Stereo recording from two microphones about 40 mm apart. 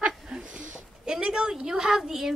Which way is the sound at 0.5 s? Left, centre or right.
Right.